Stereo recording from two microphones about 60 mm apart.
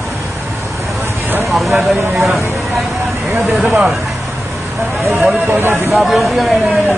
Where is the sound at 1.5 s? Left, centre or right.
Centre.